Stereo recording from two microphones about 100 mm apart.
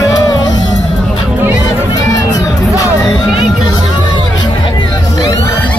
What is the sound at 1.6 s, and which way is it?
Music, 35° left (ahead or behind).